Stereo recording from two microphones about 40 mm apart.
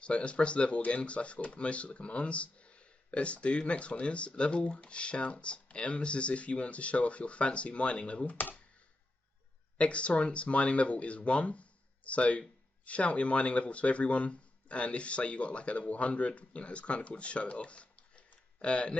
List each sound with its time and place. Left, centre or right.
0.0 s speech: left
8.3 s speech: left
9.8 s speech: left